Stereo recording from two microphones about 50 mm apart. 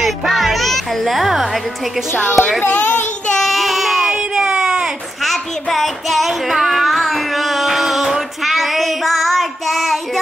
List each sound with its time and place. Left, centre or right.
0.0 s music: centre
2.3 s a child's voice: centre
2.6 s a child's voice: left
3.3 s child singing: centre
4.1 s a sound: centre
5.2 s child singing: centre